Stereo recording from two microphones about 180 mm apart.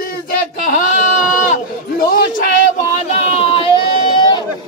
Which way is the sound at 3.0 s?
30° left (ahead or behind).